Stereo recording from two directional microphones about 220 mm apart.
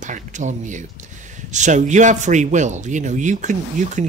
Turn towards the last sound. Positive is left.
turn(degrees=-35)  # may be behind; listen again after turning